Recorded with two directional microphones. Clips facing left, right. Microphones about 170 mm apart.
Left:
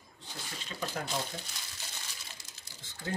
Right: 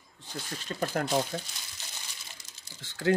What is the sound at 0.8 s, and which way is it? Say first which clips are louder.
Speech: right 7 dB; 55° right (ahead or behind).